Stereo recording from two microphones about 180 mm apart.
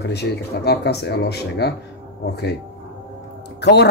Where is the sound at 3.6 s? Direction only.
70° left (ahead or behind).